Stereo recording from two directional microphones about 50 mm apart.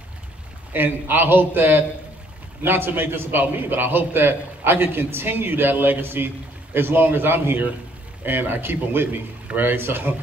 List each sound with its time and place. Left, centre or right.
0.7 s a man's voice: right